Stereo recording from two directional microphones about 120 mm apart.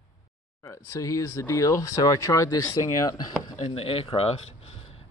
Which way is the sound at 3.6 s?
50° left (ahead or behind).